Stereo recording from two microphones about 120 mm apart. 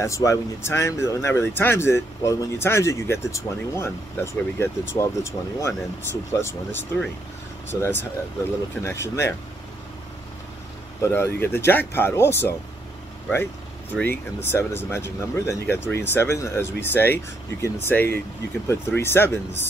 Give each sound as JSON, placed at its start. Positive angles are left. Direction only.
{"t": 0.0, "sound": "speech", "side_deg": 25}
{"t": 11.0, "sound": "speech", "side_deg": 20}
{"t": 14.0, "sound": "speech", "side_deg": 20}